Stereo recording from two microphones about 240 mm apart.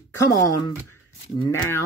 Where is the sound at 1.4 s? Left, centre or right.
Centre.